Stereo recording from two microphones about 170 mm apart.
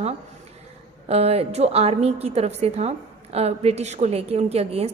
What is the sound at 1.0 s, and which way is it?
A woman's voice, 35° right (ahead or behind).